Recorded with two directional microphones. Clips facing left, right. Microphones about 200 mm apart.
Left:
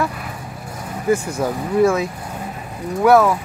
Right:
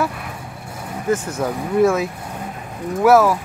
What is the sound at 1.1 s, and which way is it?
Speech, 10° left (ahead or behind).